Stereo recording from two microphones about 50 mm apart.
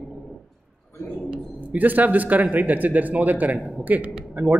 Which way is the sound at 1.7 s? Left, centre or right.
Right.